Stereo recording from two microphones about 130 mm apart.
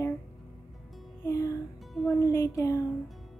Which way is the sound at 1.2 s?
25° left (ahead or behind).